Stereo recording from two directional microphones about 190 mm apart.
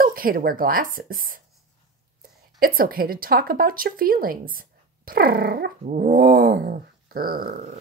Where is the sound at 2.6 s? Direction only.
50° right (ahead or behind).